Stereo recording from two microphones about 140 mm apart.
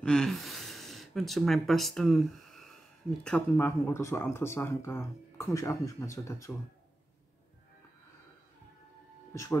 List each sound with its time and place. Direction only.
0.0 s speech: 5° left (ahead or behind)
3.5 s speech: 20° left (ahead or behind)
9.3 s speech: 20° left (ahead or behind)